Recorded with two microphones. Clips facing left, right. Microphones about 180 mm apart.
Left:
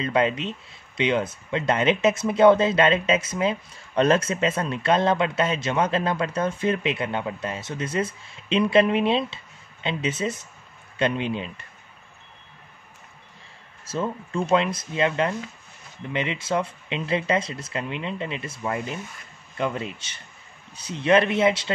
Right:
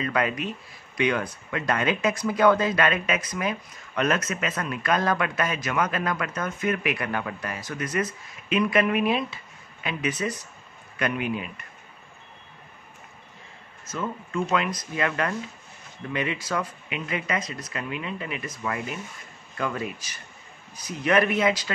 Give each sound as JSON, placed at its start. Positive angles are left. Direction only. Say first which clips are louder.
{"t": 0.0, "sound": "speech", "louder": "left 3 dB", "side_deg": 25}
{"t": 13.8, "sound": "speech", "louder": "left 4 dB", "side_deg": 30}